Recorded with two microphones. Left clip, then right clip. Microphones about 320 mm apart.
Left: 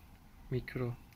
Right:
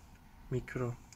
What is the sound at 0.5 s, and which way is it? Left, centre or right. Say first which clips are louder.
Speech: right 1 dB; centre.